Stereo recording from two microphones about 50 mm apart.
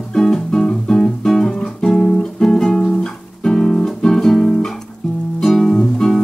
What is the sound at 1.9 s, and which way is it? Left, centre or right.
Music, centre.